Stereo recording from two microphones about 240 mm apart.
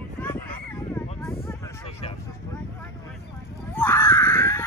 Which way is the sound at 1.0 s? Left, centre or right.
Centre.